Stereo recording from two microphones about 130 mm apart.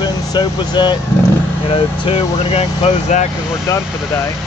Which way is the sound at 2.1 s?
50° left (ahead or behind).